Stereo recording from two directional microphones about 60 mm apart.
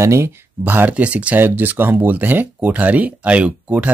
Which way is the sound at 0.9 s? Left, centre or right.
Right.